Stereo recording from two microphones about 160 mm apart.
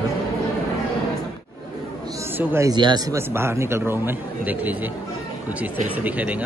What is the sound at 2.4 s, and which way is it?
Speech, 15° right (ahead or behind).